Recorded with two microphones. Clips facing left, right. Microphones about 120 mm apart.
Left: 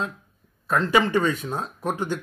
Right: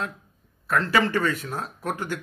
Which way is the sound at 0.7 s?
20° left (ahead or behind).